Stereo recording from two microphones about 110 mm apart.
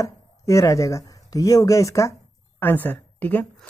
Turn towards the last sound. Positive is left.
turn(degrees=15)  # may be behind; listen again after turning